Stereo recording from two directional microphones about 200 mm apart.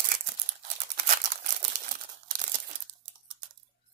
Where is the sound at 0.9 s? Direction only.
40° right (ahead or behind).